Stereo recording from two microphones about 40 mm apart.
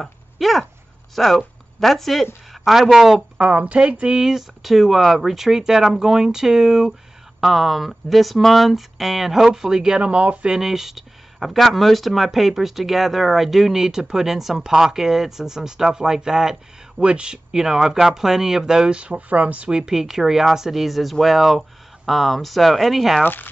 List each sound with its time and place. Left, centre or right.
0.0 s a sound: centre
1.1 s speech: centre
3.3 s speech: right
4.2 s speech: centre
7.3 s speech: centre
9.9 s speech: right
10.6 s speech: centre
17.0 s speech: right
17.5 s speech: centre
18.9 s speech: right
19.7 s speech: centre
23.2 s speech: left